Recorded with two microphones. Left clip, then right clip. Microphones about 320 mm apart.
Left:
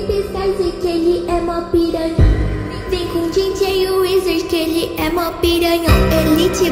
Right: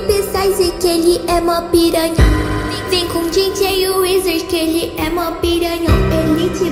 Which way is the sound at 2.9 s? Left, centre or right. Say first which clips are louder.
Right 2 dB; centre.